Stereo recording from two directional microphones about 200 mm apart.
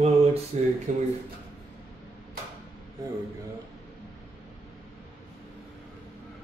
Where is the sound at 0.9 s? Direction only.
40° right (ahead or behind).